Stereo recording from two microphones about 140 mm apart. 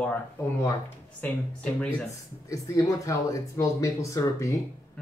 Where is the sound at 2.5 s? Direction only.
25° left (ahead or behind).